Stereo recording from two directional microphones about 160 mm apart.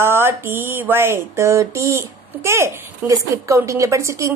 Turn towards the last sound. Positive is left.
turn(degrees=-20)  # may be behind; listen again after turning